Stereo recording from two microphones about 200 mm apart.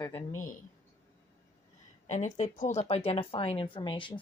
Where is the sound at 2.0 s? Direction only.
35° left (ahead or behind).